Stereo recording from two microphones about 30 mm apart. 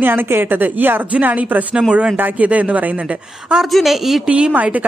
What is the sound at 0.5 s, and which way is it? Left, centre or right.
Speech, right.